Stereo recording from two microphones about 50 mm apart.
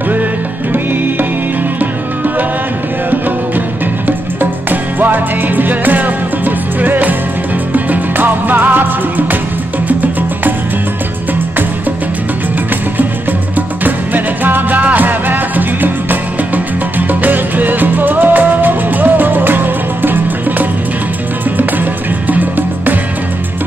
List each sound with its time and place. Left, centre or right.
4.4 s music: right
13.6 s music: right
22.3 s music: right